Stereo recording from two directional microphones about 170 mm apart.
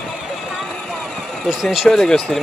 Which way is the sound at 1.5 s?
5° right (ahead or behind).